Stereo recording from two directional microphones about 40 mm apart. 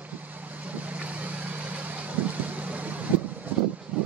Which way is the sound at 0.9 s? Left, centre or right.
Right.